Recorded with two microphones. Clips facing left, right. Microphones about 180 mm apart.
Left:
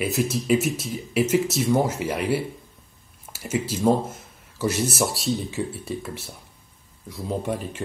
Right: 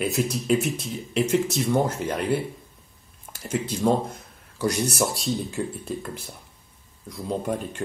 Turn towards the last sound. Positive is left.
turn(degrees=5)  # may be behind; listen again after turning